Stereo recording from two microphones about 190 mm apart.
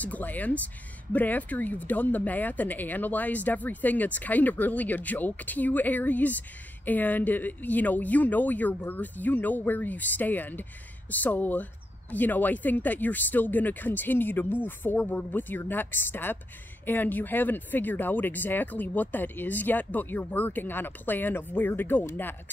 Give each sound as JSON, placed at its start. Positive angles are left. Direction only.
{"t": 0.0, "sound": "speech", "side_deg": 10}